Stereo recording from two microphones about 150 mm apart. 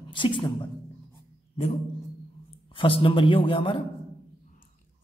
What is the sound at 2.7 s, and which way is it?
Speech, 35° left (ahead or behind).